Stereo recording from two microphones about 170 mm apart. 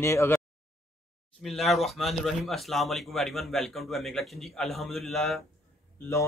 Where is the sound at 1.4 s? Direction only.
Centre (ahead or behind).